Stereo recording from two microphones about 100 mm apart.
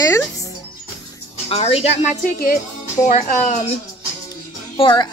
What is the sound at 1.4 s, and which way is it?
Speech, 90° left.